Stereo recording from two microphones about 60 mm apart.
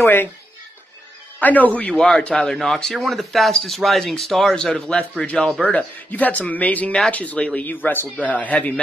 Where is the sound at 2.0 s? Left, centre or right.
Centre.